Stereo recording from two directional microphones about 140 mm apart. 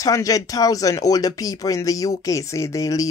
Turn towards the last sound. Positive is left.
turn(degrees=25)  # may be behind; listen again after turning